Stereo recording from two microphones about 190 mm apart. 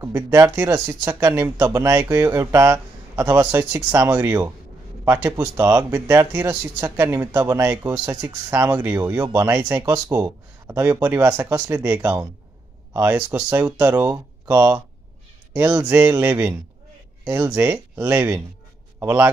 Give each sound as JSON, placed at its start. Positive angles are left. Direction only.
{"t": 0.0, "sound": "speech", "side_deg": -15}